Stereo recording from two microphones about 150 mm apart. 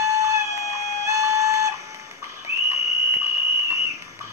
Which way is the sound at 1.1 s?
20° right (ahead or behind).